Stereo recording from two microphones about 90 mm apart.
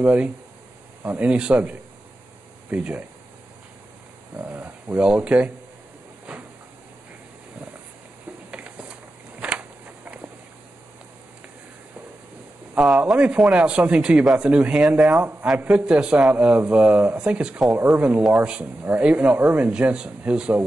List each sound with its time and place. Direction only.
0.0 s speech: 15° right (ahead or behind)
4.4 s speech: 20° right (ahead or behind)
8.5 s a sound: 15° right (ahead or behind)
12.7 s speech: 5° right (ahead or behind)